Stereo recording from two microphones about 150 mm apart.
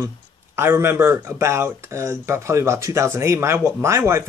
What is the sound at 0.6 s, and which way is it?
Speech, 15° right (ahead or behind).